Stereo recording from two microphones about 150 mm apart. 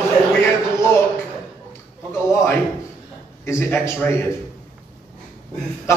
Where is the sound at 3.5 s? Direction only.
20° left (ahead or behind).